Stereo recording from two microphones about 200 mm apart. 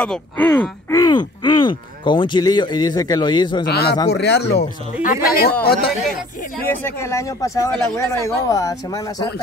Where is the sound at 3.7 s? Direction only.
55° left (ahead or behind).